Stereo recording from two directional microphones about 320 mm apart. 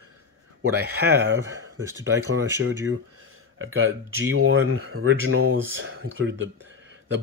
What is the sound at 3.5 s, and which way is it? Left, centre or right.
Speech, right.